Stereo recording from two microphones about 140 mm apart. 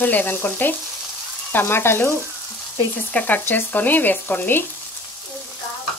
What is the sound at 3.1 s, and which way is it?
Frying, 10° left (ahead or behind).